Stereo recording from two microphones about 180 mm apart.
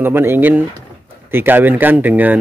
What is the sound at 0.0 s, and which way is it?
A man's voice, 10° right (ahead or behind).